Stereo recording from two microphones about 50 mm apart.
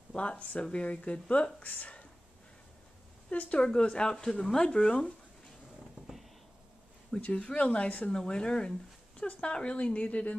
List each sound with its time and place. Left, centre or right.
0.1 s speech: left
3.3 s speech: left
7.2 s speech: left
8.1 s speech: centre